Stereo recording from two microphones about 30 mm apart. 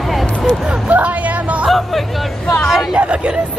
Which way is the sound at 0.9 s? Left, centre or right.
Right.